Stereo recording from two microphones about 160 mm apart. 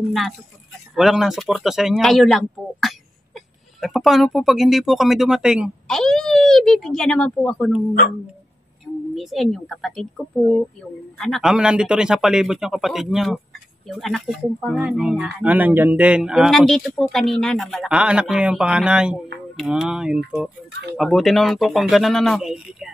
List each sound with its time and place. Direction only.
0.9 s speech: centre (ahead or behind)
9.1 s speech: centre (ahead or behind)